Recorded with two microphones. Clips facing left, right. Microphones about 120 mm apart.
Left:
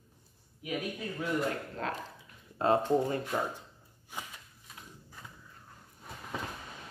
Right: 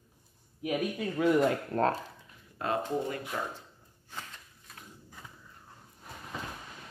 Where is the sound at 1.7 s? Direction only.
55° right (ahead or behind).